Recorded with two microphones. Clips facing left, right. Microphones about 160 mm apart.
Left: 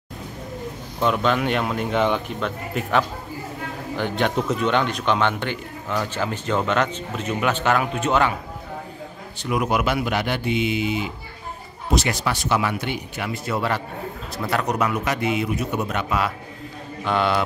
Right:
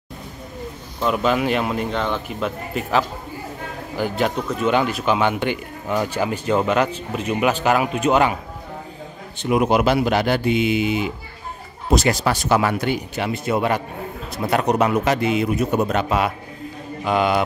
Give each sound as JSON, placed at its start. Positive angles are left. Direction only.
{"t": 1.0, "sound": "speech", "side_deg": -5}
{"t": 9.4, "sound": "speech", "side_deg": -25}
{"t": 10.7, "sound": "speech", "side_deg": -65}
{"t": 12.0, "sound": "speech", "side_deg": -40}
{"t": 13.2, "sound": "speech", "side_deg": -20}
{"t": 15.4, "sound": "a man's voice", "side_deg": -40}
{"t": 17.0, "sound": "speech", "side_deg": -10}